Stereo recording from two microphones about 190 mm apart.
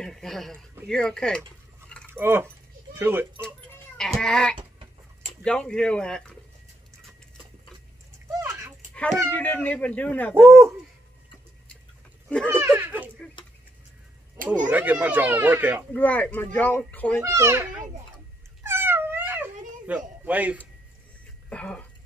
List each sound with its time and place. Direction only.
0.0 s speech: centre (ahead or behind)
2.0 s a sound: 10° right (ahead or behind)
4.0 s speech: 5° left (ahead or behind)
4.6 s chicken: 30° right (ahead or behind)
5.4 s speech: 5° left (ahead or behind)
8.4 s a sound: 10° right (ahead or behind)
8.9 s speech: 5° left (ahead or behind)
10.4 s speech: 15° right (ahead or behind)
12.4 s speech: 10° right (ahead or behind)
14.7 s speech: 10° right (ahead or behind)
15.9 s speech: 10° left (ahead or behind)
17.2 s speech: 15° right (ahead or behind)
18.6 s a sound: 10° right (ahead or behind)
21.5 s speech: 5° left (ahead or behind)